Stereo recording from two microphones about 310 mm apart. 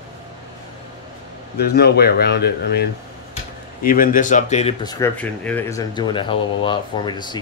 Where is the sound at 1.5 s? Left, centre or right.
Left.